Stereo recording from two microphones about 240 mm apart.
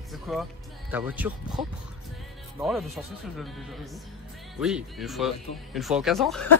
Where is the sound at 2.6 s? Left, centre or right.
Centre.